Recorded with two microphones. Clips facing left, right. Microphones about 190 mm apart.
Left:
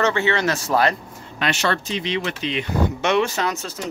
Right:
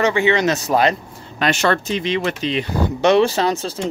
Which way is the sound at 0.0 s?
15° right (ahead or behind).